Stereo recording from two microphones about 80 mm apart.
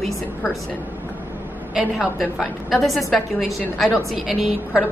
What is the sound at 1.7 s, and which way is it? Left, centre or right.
A woman's voice, centre.